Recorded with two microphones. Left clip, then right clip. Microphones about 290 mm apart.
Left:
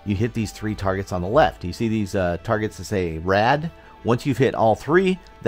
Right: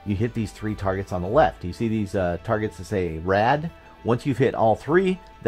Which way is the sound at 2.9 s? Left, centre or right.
Left.